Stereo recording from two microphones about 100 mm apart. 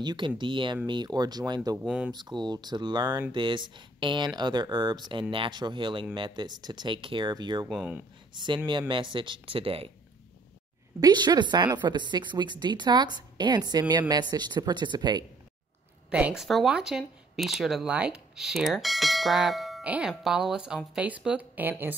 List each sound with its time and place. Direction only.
0.0 s a woman's voice: 50° right (ahead or behind)
1.9 s speech: 10° right (ahead or behind)
2.1 s a woman's voice: 45° right (ahead or behind)
7.7 s speech: 10° right (ahead or behind)
8.6 s speech: 55° right (ahead or behind)
11.0 s a woman's voice: 45° right (ahead or behind)
16.1 s speech: 15° right (ahead or behind)
16.3 s speech: centre (ahead or behind)
19.8 s speech: 15° right (ahead or behind)